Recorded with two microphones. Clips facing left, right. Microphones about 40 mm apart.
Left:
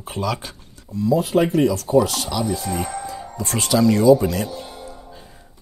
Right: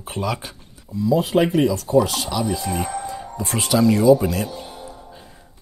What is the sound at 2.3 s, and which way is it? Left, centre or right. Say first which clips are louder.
Speech: even; centre.